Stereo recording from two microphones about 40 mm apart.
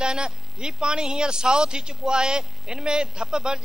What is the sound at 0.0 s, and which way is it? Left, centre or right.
Speech, centre.